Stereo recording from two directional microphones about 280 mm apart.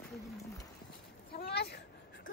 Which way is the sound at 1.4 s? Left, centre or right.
Left.